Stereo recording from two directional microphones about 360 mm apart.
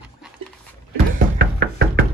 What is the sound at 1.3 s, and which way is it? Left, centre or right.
Music, right.